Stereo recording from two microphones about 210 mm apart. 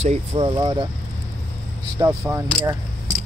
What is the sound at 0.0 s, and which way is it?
Speech, 35° right (ahead or behind).